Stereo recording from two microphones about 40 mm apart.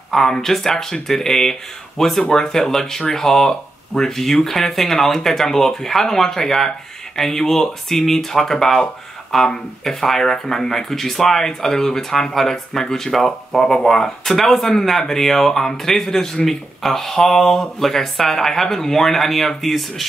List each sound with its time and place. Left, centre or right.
0.1 s speech: centre
2.2 s speech: left
2.5 s speech: centre